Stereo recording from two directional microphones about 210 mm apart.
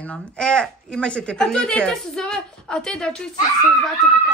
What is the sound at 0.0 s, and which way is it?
Speech, 5° left (ahead or behind).